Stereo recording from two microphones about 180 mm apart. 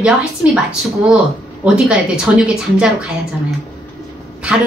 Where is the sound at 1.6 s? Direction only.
5° right (ahead or behind).